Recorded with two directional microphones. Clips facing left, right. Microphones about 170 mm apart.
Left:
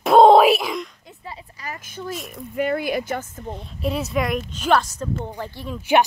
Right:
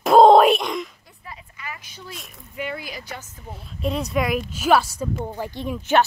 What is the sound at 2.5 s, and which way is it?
Speech, 50° left (ahead or behind).